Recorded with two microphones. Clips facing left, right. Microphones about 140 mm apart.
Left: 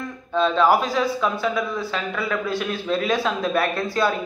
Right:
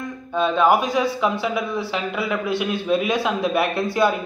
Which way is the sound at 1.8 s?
20° right (ahead or behind).